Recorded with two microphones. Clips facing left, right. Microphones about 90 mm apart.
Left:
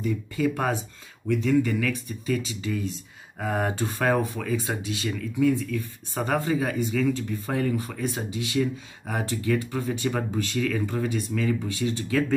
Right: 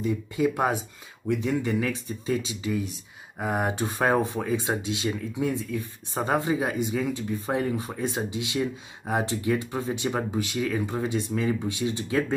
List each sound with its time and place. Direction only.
0.0 s speech: 20° right (ahead or behind)
2.6 s speech: 15° right (ahead or behind)